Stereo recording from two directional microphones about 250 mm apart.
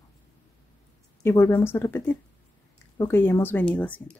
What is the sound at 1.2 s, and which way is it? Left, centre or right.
Speech, centre.